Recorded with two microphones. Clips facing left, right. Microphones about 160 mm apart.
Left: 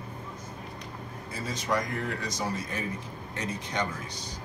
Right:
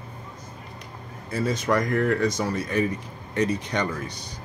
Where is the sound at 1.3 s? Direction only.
65° right (ahead or behind).